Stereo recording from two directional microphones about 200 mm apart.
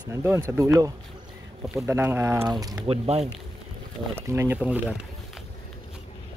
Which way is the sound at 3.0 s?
30° right (ahead or behind).